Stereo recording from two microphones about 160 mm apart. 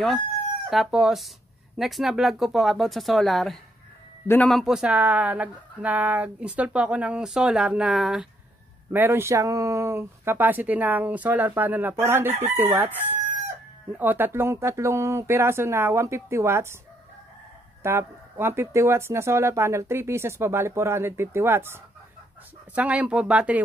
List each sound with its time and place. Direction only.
0.7 s speech: centre (ahead or behind)
8.9 s speech: 15° right (ahead or behind)
17.8 s speech: 15° right (ahead or behind)